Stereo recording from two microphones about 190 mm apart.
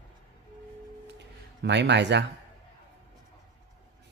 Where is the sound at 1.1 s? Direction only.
65° right (ahead or behind).